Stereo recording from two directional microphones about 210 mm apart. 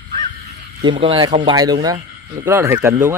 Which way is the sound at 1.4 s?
20° right (ahead or behind).